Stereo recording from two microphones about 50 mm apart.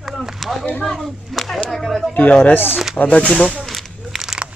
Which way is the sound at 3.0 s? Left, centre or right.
Left.